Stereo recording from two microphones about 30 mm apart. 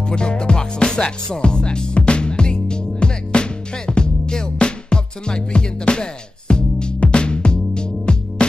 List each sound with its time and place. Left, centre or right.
0.1 s music: left